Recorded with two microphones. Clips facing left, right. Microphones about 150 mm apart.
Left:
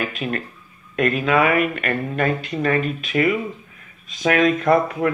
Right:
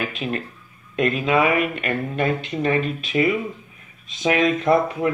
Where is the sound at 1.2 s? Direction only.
20° right (ahead or behind).